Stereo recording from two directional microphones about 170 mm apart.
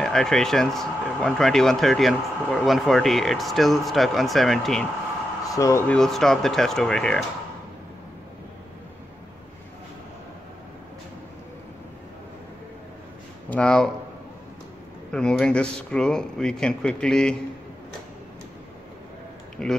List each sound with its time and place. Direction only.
0.0 s speech: 5° left (ahead or behind)
5.6 s speech: 20° left (ahead or behind)
5.9 s speech: 5° left (ahead or behind)
13.5 s speech: 5° left (ahead or behind)
15.0 s speech: 5° left (ahead or behind)
19.6 s speech: centre (ahead or behind)